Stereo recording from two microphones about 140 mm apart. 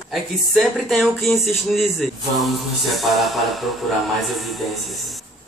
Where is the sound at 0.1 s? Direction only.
Centre (ahead or behind).